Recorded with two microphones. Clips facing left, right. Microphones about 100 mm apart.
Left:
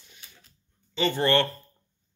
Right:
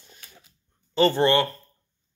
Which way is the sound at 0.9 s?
40° right (ahead or behind).